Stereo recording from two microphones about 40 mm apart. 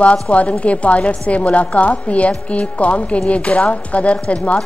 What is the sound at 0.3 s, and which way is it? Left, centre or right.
A woman's voice, left.